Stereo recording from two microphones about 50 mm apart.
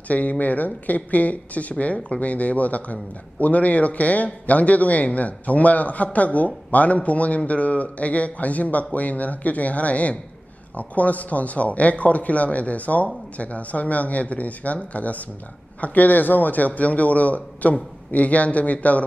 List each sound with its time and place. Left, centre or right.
0.1 s a man's voice: left